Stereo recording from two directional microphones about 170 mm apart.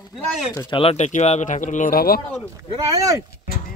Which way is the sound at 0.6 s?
30° left (ahead or behind).